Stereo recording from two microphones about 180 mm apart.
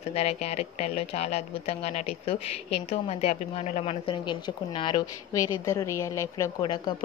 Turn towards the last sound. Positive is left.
turn(degrees=15)  # may be behind; listen again after turning